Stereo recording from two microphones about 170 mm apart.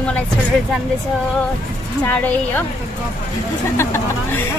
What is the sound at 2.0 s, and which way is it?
Speech, 10° left (ahead or behind).